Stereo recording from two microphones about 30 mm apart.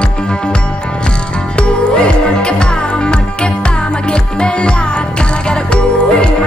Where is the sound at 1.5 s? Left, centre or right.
Left.